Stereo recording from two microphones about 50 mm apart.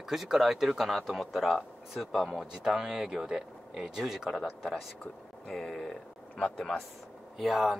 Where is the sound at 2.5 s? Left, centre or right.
Centre.